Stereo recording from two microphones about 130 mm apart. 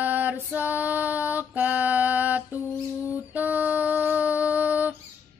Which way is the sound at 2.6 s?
20° left (ahead or behind).